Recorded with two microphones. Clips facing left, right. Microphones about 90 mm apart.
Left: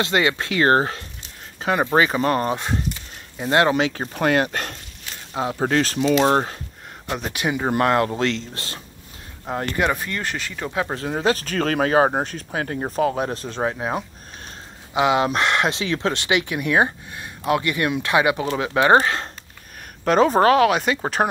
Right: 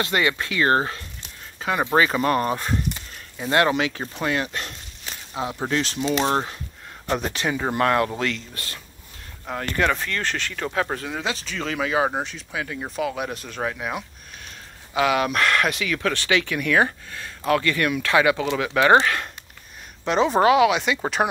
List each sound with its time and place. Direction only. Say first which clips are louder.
0.0 s speech: left 2 dB; 25° left (ahead or behind)
4.1 s speech: left 5 dB; 55° left (ahead or behind)
5.3 s speech: left 4 dB; 35° left (ahead or behind)
5.7 s speech: left 5 dB; 45° left (ahead or behind)
7.1 s speech: right 2 dB; 5° left (ahead or behind)
7.4 s speech: left 3 dB; 15° left (ahead or behind)
11.0 s speech: left 7 dB; 40° left (ahead or behind)
20.1 s speech: left 2 dB; 45° left (ahead or behind)